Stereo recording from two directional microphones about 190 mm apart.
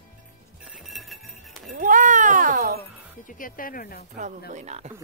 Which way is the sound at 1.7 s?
45° right (ahead or behind).